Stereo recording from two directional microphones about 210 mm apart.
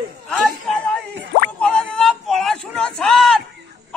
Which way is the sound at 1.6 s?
5° left (ahead or behind).